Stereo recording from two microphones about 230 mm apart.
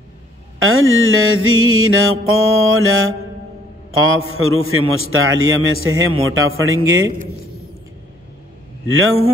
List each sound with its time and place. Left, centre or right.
0.6 s a man's voice: right
8.8 s a man's voice: right